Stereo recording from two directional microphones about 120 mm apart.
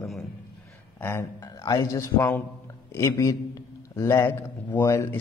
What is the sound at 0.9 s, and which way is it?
A man's voice, 20° left (ahead or behind).